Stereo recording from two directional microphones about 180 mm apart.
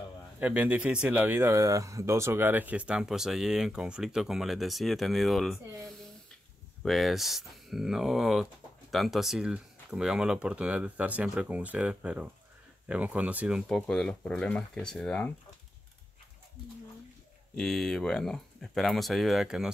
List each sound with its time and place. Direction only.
0.4 s speech: 10° right (ahead or behind)
17.6 s speech: centre (ahead or behind)